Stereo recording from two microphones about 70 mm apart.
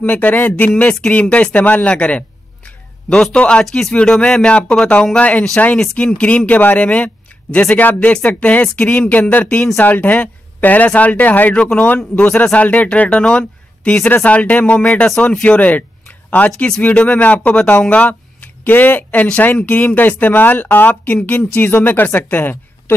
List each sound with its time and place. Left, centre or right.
0.0 s a man's voice: left
11.6 s speech: centre
12.2 s speech: left